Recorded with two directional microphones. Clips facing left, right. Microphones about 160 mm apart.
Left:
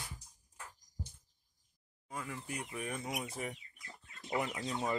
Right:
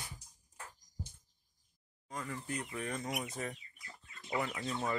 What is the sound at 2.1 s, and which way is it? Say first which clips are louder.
Speech: right 2 dB; 10° left (ahead or behind).